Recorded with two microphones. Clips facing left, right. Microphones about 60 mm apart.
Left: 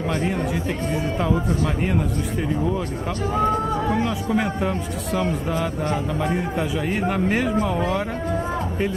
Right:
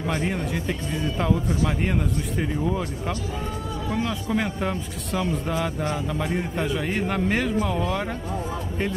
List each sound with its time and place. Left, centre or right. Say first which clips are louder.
1.3 s speech: left 1 dB; left
1.8 s a man's voice: left 3 dB; centre
3.3 s a sound: left 10 dB; left
4.4 s a man's voice: left 3 dB; centre